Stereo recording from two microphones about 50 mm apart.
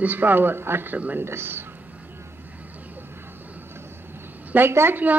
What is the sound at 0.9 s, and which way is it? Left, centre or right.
Speech, right.